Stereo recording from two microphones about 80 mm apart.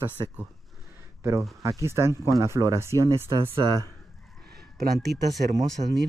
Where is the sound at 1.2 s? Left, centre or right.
Right.